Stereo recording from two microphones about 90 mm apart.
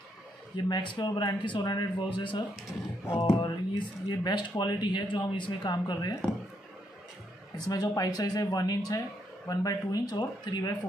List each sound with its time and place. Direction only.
0.7 s speech: 55° left (ahead or behind)
7.5 s speech: 50° left (ahead or behind)